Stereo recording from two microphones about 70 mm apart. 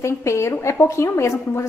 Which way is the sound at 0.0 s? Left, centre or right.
Left.